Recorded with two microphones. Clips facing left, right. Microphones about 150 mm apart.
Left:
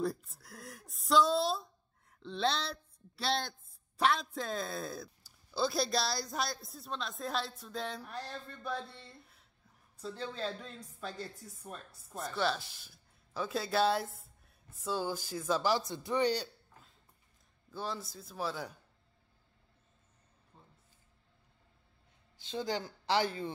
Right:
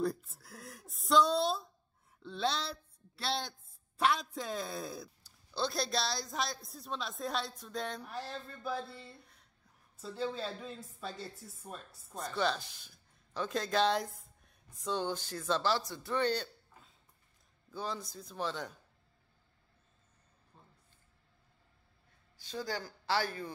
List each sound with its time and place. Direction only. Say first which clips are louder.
0.0 s a woman's voice: right 1 dB; centre (ahead or behind)
5.5 s a woman's voice: left 3 dB; 5° left (ahead or behind)
17.6 s a woman's voice: even; centre (ahead or behind)
22.4 s speech: left 3 dB; 20° left (ahead or behind)